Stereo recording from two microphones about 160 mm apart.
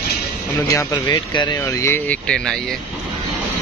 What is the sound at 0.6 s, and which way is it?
Speech, 20° left (ahead or behind).